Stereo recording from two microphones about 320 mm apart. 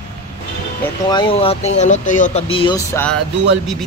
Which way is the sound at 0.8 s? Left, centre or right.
Centre.